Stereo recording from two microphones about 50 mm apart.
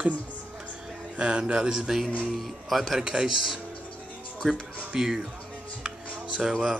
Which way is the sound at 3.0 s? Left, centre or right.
Centre.